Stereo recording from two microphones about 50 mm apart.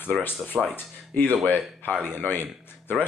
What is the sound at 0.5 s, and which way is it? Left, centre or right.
Speech, centre.